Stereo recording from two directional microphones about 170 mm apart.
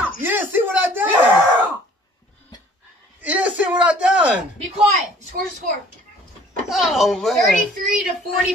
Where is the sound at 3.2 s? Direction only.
10° right (ahead or behind).